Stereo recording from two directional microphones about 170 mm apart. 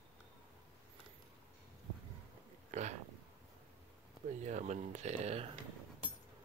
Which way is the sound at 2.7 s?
45° right (ahead or behind).